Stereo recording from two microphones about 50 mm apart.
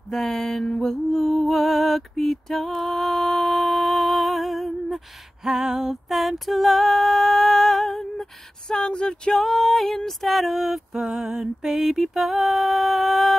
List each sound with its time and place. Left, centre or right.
0.1 s music: centre
11.0 s mantra: centre